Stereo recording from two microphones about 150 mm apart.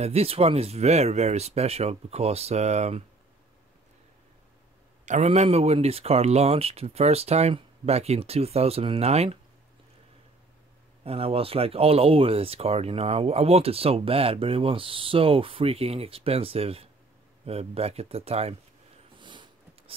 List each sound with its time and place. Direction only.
0.0 s speech: 45° right (ahead or behind)
5.0 s speech: 50° right (ahead or behind)
11.1 s speech: 40° right (ahead or behind)
19.1 s a sound: 30° right (ahead or behind)